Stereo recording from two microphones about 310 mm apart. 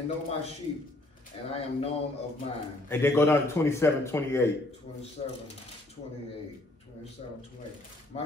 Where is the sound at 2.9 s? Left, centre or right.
Centre.